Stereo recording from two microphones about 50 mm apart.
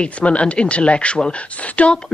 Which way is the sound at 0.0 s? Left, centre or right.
Left.